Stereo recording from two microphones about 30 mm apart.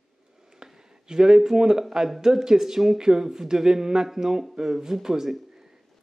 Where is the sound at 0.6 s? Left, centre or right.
Right.